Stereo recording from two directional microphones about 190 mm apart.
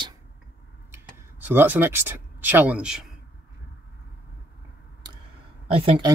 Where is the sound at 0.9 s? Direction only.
10° right (ahead or behind).